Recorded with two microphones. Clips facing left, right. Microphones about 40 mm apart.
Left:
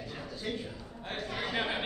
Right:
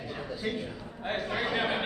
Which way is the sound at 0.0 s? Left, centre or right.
Centre.